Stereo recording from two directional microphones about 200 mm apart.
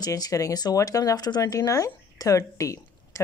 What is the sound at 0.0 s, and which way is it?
Speech, 20° left (ahead or behind).